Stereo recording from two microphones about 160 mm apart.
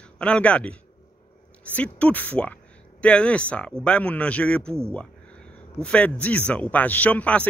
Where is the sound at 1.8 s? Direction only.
10° left (ahead or behind).